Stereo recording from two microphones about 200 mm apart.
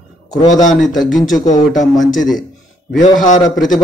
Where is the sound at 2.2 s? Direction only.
Centre (ahead or behind).